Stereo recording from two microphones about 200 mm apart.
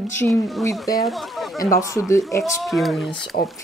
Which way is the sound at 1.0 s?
Centre (ahead or behind).